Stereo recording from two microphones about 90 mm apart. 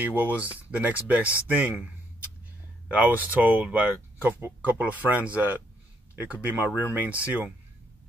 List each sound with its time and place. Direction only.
0.0 s speech: 20° right (ahead or behind)
2.9 s speech: 20° right (ahead or behind)